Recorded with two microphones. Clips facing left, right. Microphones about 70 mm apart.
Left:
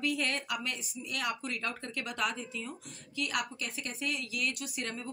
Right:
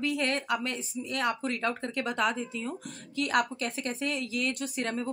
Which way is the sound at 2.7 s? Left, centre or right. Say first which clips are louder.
Right 7 dB; right.